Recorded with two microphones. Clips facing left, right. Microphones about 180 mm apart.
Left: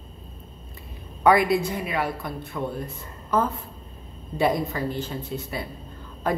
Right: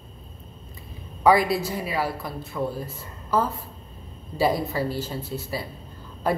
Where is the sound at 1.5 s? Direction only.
Centre (ahead or behind).